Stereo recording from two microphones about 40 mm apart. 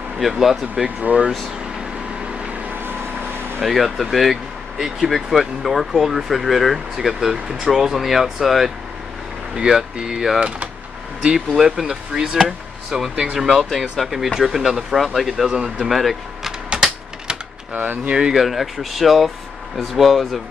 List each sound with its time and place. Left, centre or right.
0.3 s speech: centre
0.8 s speech: right
2.7 s vehicle: right
3.6 s speech: centre
9.6 s speech: centre
11.3 s speech: centre
13.7 s speech: centre
15.0 s speech: centre
15.9 s speech: centre
17.7 s speech: right
18.3 s speech: centre